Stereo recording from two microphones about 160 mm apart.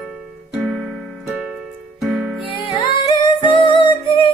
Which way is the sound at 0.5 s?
5° right (ahead or behind).